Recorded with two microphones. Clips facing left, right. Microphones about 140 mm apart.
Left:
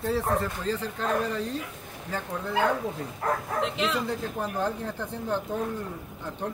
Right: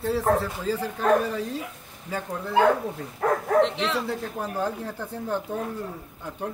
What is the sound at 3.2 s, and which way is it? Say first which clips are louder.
Speech: right 5 dB; 90° right.